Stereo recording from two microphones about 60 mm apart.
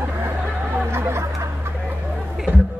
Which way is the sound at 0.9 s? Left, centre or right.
Right.